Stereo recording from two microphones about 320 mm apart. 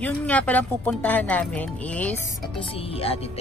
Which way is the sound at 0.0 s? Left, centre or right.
Centre.